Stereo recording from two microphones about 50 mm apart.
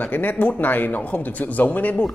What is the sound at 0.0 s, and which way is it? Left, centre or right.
A man's voice, left.